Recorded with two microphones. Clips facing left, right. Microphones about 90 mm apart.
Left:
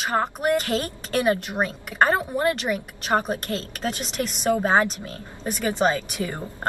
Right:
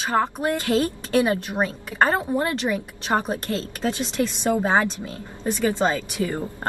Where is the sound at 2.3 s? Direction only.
30° right (ahead or behind).